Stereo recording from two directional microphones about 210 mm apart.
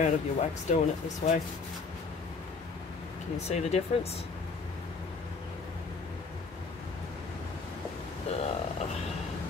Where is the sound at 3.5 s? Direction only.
30° left (ahead or behind).